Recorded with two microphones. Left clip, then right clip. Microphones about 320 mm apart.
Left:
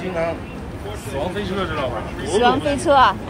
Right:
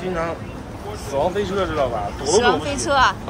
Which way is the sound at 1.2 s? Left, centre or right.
Right.